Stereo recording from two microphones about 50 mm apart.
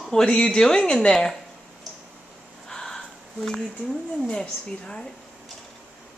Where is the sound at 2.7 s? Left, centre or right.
Centre.